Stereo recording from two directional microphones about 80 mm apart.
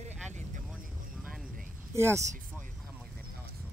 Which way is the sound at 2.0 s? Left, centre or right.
Right.